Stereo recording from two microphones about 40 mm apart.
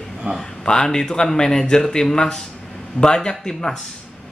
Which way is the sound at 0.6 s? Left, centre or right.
Centre.